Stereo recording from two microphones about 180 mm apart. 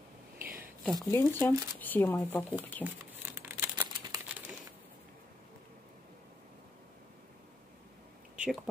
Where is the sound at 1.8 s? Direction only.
10° left (ahead or behind).